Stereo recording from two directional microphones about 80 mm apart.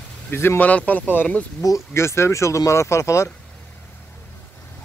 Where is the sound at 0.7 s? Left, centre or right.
Centre.